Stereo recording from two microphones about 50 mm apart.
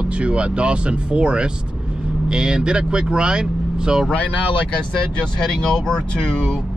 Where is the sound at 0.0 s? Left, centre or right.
Right.